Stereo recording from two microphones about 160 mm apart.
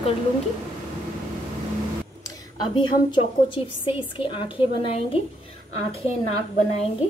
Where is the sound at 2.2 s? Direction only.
25° left (ahead or behind).